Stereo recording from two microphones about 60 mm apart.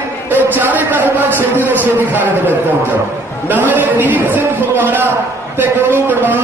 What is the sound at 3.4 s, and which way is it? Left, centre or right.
A man's voice, right.